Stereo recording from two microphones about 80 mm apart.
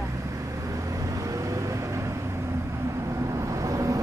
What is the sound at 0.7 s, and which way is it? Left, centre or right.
Vehicle, right.